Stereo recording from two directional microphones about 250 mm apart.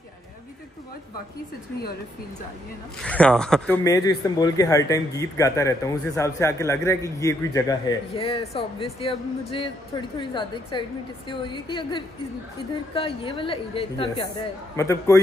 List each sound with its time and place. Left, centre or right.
3.0 s a man's voice: centre